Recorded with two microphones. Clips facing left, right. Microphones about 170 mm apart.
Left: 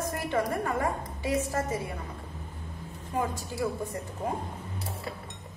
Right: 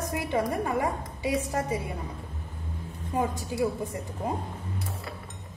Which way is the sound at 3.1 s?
15° right (ahead or behind).